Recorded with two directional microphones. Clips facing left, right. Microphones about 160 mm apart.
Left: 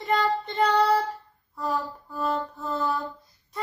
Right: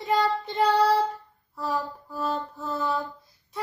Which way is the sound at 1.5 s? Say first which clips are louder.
Even; 5° right (ahead or behind).